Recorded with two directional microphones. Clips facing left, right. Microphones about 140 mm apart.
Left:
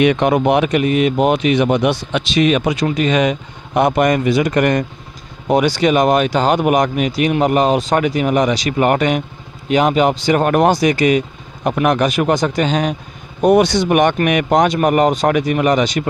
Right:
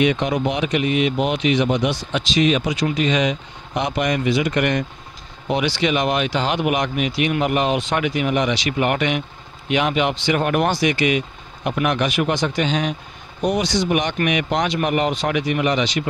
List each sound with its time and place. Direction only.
0.0 s speech: 60° left (ahead or behind); by 12.9 s 45° left (ahead or behind)
13.4 s speech: 55° left (ahead or behind)